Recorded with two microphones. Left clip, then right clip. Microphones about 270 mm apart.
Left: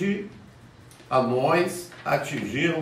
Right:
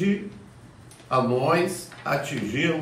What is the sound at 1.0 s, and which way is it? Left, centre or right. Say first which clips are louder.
A man's voice: even; centre.